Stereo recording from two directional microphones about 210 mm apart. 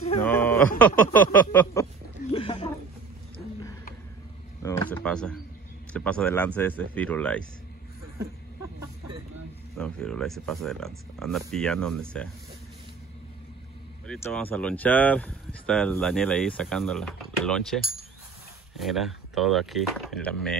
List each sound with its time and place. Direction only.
0.2 s a sound: 10° left (ahead or behind)
0.7 s speech: 5° left (ahead or behind)
1.2 s a sound: 10° left (ahead or behind)
2.3 s speech: 25° left (ahead or behind)
4.6 s speech: 10° left (ahead or behind)
9.8 s speech: 5° left (ahead or behind)
14.0 s speech: 5° left (ahead or behind)
18.8 s speech: centre (ahead or behind)